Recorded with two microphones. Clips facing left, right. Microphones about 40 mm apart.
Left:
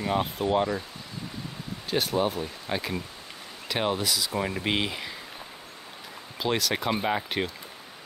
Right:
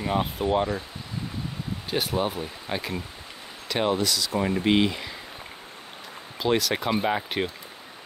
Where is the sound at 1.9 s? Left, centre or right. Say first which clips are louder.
Left 1 dB; centre.